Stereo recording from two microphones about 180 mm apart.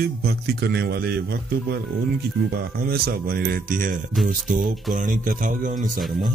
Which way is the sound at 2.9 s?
60° right (ahead or behind).